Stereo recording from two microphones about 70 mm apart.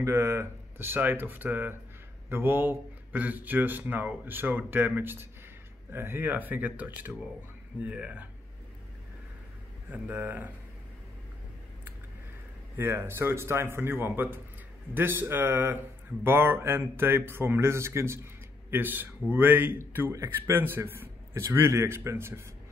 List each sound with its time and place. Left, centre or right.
0.0 s a man's voice: right; by 8.3 s centre
9.8 s speech: right
12.7 s a man's voice: right